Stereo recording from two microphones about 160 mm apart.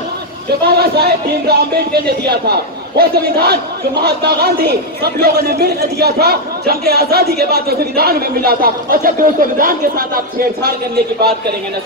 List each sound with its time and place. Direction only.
0.7 s a man's voice: 80° right; by 10.7 s 65° right (ahead or behind)